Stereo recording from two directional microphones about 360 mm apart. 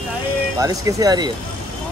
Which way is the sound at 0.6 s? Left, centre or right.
Centre.